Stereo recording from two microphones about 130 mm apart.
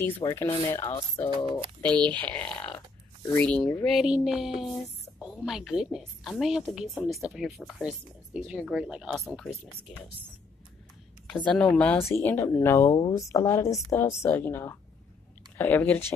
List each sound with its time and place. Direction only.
0.2 s speech: 30° left (ahead or behind)
0.7 s a woman's voice: 20° left (ahead or behind)
1.8 s a woman's voice: 10° left (ahead or behind)
11.2 s a woman's voice: 10° left (ahead or behind)